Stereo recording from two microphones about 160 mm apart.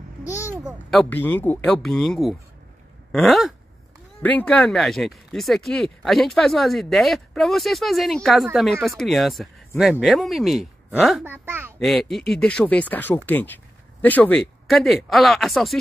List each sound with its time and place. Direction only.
0.5 s a sound: 15° right (ahead or behind)
0.8 s speech: 5° left (ahead or behind)
4.2 s speech: 10° left (ahead or behind)
11.2 s a child's voice: 15° right (ahead or behind)
11.8 s speech: centre (ahead or behind)